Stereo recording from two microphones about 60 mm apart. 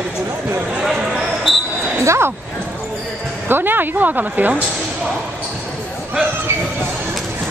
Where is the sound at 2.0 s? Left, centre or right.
Right.